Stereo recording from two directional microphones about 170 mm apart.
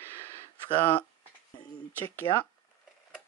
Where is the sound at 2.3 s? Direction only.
30° left (ahead or behind).